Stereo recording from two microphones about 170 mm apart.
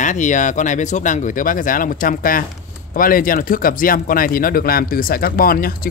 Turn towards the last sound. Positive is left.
turn(degrees=60)  # may be behind; listen again after turning